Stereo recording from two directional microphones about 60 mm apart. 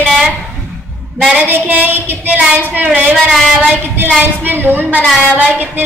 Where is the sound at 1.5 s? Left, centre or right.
Right.